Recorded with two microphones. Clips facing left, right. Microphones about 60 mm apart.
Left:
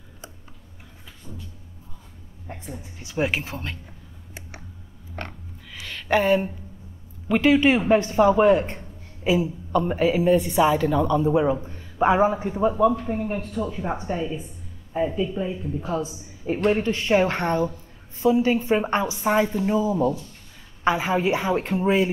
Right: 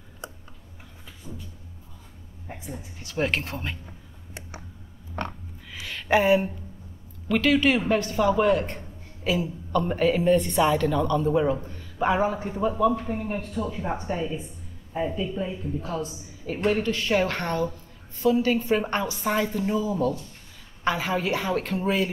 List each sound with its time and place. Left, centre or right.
2.4 s a woman's voice: centre
3.2 s speech: centre
5.8 s a sound: centre
7.2 s a woman's voice: centre
13.0 s speech: centre
15.8 s a woman's voice: centre
16.4 s a woman's voice: left